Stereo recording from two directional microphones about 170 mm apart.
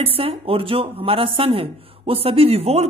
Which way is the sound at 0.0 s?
35° right (ahead or behind).